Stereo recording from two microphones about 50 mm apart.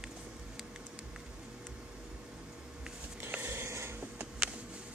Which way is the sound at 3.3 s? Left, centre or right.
Right.